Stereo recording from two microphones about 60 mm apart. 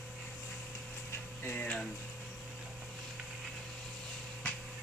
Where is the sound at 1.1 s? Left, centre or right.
Left.